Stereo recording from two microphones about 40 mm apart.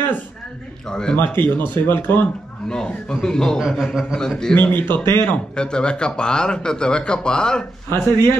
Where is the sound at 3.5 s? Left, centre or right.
Centre.